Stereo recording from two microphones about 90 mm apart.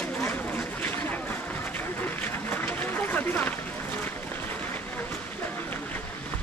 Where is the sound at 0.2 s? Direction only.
25° left (ahead or behind).